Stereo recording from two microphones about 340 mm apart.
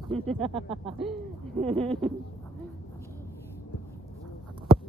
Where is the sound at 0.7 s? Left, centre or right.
Centre.